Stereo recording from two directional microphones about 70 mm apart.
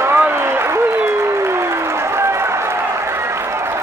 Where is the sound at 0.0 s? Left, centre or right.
Right.